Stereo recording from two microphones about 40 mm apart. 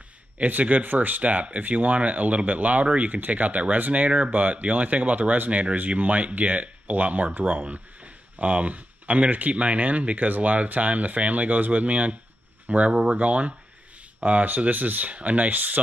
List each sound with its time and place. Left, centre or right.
0.4 s speech: right
12.9 s speech: centre
13.2 s speech: right